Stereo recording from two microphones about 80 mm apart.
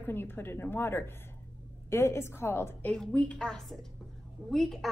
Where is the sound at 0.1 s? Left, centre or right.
Left.